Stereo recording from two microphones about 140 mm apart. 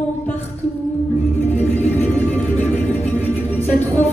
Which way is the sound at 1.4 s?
10° left (ahead or behind).